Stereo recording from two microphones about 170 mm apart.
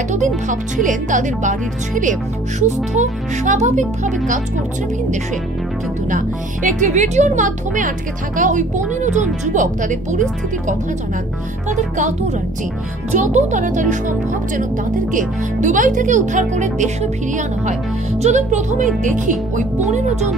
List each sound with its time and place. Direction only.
0.5 s speech: 50° right (ahead or behind)
6.0 s speech: 50° right (ahead or behind)
11.7 s speech: 45° right (ahead or behind)